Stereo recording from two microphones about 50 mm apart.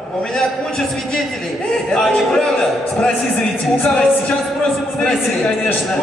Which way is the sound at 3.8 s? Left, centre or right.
Left.